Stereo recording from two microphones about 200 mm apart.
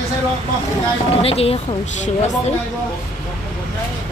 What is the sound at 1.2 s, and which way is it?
Speech, 30° left (ahead or behind).